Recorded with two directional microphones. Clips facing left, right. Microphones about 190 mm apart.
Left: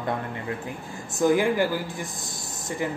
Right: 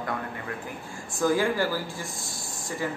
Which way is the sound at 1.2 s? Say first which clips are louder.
Left 3 dB; 20° left (ahead or behind).